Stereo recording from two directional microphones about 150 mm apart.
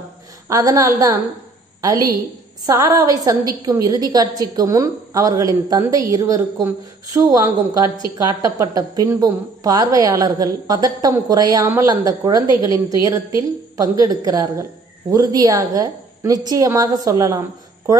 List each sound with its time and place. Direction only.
0.5 s a woman's voice: 20° right (ahead or behind)